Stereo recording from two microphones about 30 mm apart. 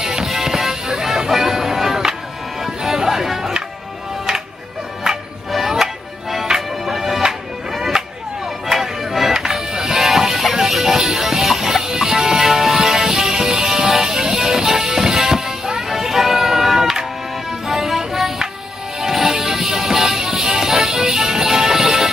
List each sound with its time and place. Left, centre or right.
0.0 s music: centre
6.5 s music: centre
8.6 s a sound: centre
9.3 s music: centre